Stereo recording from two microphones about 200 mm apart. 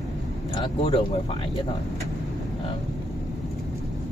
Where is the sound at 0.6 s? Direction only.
25° left (ahead or behind).